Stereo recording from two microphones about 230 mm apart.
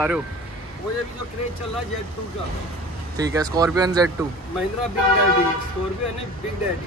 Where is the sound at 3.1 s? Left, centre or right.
Centre.